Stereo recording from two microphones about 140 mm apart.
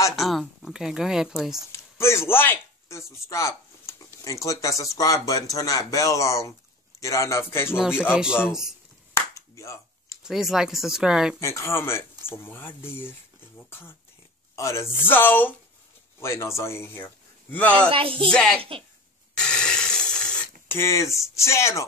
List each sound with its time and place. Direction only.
0.1 s speech: centre (ahead or behind)
1.7 s speech: 20° left (ahead or behind)
8.5 s speech: 5° right (ahead or behind)
9.1 s a sound: 20° left (ahead or behind)
10.2 s speech: 5° right (ahead or behind)
11.4 s speech: 20° left (ahead or behind)
17.8 s music: 40° right (ahead or behind)
18.3 s speech: 5° left (ahead or behind)
18.6 s music: 40° right (ahead or behind)
19.3 s a sound: 5° left (ahead or behind)
20.7 s speech: 20° left (ahead or behind)